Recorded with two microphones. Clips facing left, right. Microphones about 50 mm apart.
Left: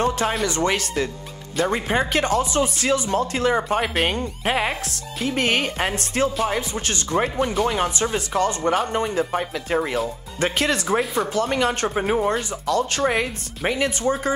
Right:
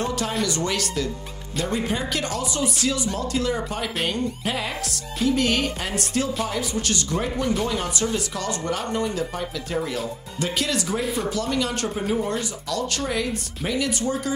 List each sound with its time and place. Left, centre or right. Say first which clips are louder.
0.5 s speech: left 3 dB; left